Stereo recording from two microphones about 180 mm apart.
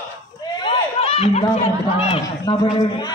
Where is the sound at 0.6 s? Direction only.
30° left (ahead or behind).